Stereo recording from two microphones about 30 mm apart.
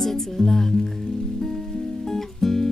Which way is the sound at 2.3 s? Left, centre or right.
Centre.